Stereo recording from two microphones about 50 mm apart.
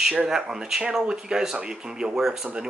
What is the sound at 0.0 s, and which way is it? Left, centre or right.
Speech, centre.